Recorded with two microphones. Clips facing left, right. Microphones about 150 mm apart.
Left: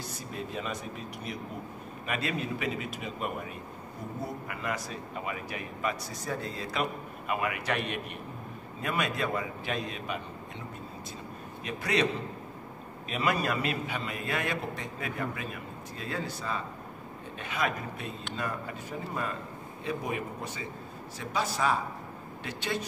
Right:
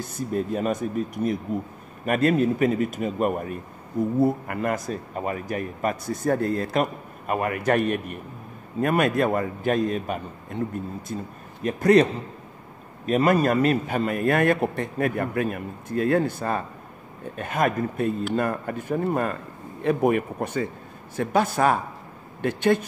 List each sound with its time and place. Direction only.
0.0 s speech: 50° right (ahead or behind)
11.6 s speech: 45° right (ahead or behind)